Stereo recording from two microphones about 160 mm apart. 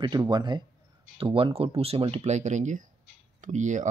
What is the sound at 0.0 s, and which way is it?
Speech, 25° right (ahead or behind).